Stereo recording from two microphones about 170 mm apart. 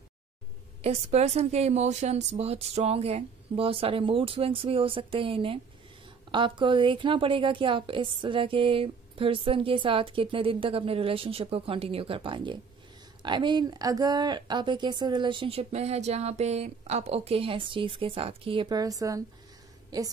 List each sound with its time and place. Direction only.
0.8 s a woman's voice: 40° right (ahead or behind); by 19.2 s 20° right (ahead or behind)